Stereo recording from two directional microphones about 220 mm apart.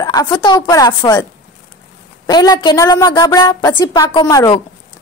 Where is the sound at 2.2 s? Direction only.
15° left (ahead or behind).